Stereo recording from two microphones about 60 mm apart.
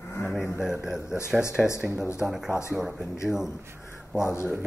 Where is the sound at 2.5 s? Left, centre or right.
Left.